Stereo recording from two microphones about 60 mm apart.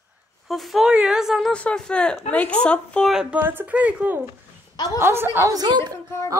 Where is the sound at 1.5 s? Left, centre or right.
Centre.